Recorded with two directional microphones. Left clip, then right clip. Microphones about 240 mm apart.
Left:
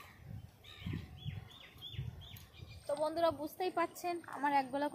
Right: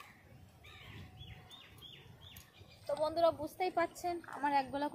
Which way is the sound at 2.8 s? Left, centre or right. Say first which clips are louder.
Right 2 dB; centre.